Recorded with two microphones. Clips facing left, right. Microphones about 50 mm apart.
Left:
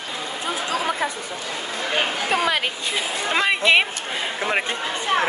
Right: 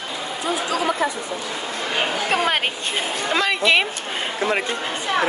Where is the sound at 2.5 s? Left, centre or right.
Right.